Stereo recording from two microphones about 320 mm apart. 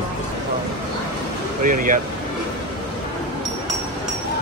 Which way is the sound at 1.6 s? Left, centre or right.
Right.